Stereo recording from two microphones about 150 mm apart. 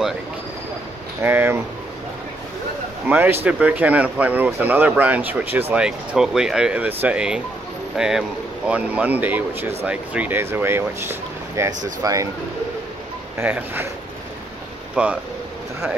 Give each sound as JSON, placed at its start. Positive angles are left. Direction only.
{"t": 1.2, "sound": "speech", "side_deg": -15}
{"t": 3.1, "sound": "speech", "side_deg": -15}
{"t": 13.4, "sound": "speech", "side_deg": -15}
{"t": 15.0, "sound": "speech", "side_deg": -10}